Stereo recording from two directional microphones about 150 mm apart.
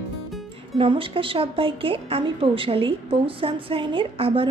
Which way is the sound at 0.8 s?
35° right (ahead or behind).